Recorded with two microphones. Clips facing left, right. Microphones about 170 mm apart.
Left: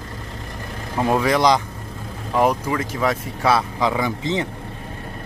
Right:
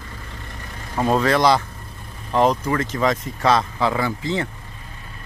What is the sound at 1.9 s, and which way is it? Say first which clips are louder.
Vehicle: left 7 dB; 90° left.